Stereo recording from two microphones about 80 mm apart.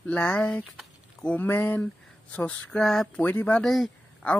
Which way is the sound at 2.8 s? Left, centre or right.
Centre.